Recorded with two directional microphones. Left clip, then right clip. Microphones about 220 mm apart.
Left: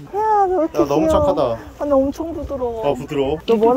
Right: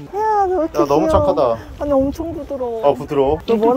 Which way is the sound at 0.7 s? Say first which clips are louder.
Right 1 dB; 15° left (ahead or behind).